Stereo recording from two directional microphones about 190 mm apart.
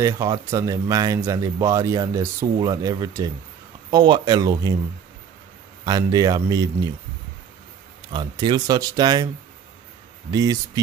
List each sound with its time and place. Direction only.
0.0 s speech: 15° right (ahead or behind)
5.9 s speech: 20° right (ahead or behind)
8.1 s speech: 25° right (ahead or behind)
10.3 s speech: 20° right (ahead or behind)